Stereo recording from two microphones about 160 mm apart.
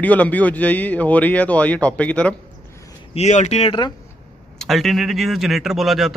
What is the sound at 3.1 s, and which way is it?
Speech, 45° left (ahead or behind).